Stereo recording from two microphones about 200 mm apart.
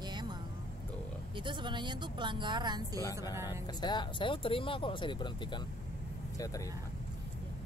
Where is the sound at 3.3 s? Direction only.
15° right (ahead or behind).